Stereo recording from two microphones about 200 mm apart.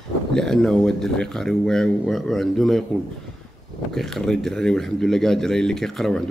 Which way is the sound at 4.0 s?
Centre (ahead or behind).